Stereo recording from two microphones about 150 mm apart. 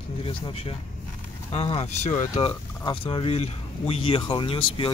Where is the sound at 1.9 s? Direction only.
50° left (ahead or behind).